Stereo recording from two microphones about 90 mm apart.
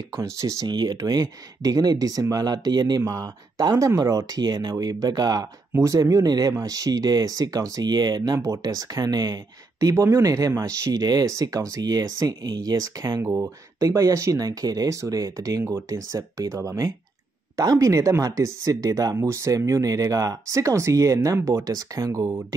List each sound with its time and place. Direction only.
0.2 s speech: 35° right (ahead or behind)
0.7 s speech: 50° right (ahead or behind)
5.8 s speech: 40° right (ahead or behind)